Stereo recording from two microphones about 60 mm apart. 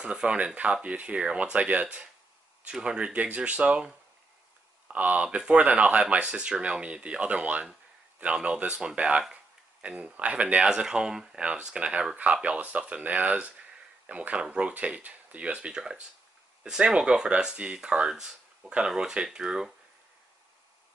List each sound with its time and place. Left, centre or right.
0.0 s speech: centre
15.7 s speech: centre